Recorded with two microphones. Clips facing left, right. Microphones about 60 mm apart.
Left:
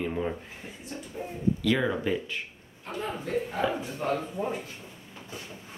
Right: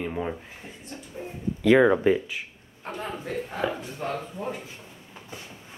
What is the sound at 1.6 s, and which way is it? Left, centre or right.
A man's voice, right.